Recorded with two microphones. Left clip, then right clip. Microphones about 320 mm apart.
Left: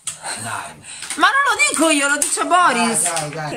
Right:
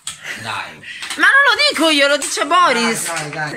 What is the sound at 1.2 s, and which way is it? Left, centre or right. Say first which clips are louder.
Speech: right 3 dB; centre.